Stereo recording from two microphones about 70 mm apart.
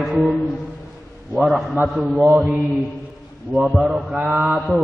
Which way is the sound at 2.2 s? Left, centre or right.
Centre.